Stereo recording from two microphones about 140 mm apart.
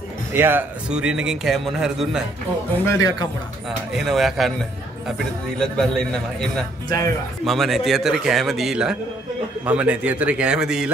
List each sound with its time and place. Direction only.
0.3 s a man's voice: 15° right (ahead or behind)
2.9 s speech: 25° left (ahead or behind)
3.9 s a man's voice: centre (ahead or behind)
5.6 s a man's voice: 5° left (ahead or behind)
6.9 s speech: 25° left (ahead or behind)
7.4 s a man's voice: centre (ahead or behind)